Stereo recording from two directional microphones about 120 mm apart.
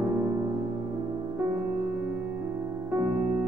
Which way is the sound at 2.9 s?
15° right (ahead or behind).